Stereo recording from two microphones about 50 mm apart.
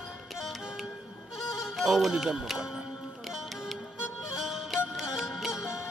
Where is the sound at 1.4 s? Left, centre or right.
Centre.